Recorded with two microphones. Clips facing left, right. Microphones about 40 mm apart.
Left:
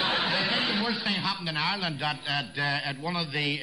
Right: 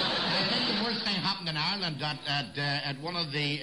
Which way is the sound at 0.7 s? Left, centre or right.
Left.